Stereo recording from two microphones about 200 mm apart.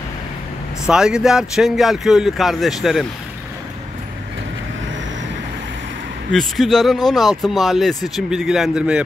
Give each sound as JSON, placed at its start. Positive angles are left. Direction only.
{"t": 0.8, "sound": "speech", "side_deg": -5}
{"t": 6.3, "sound": "speech", "side_deg": 0}